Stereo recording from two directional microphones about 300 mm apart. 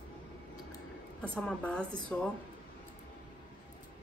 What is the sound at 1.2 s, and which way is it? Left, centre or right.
A man's voice, centre.